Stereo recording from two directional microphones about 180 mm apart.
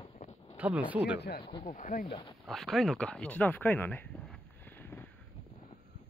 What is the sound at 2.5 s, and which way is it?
Speech, centre (ahead or behind).